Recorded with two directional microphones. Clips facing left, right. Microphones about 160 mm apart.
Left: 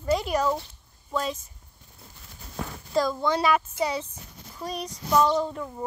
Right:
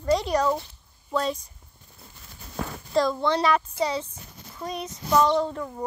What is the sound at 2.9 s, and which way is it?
Speech, 5° left (ahead or behind).